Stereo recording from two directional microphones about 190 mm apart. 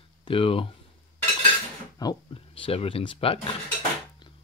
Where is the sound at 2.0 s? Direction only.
25° left (ahead or behind).